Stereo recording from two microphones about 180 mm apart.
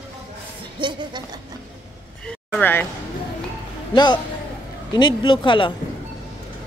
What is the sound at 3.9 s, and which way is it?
Speech, 25° left (ahead or behind).